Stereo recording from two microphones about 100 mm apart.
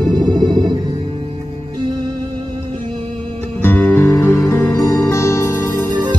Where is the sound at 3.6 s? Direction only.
20° left (ahead or behind).